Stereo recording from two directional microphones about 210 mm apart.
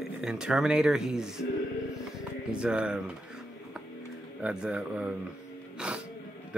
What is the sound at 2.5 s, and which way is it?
Speech, 5° right (ahead or behind).